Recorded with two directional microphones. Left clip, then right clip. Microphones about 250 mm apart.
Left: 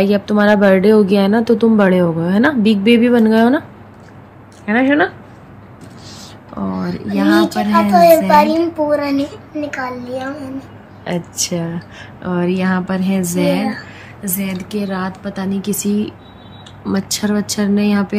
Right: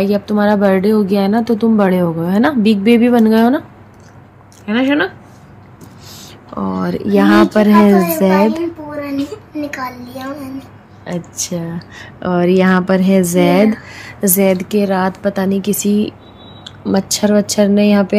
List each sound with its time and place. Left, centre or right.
0.0 s a woman's voice: centre
4.6 s a woman's voice: centre
7.1 s speech: centre
8.3 s a child's voice: left
9.1 s a woman's voice: centre